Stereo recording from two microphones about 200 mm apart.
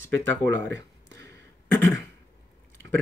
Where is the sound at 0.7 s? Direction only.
60° right (ahead or behind).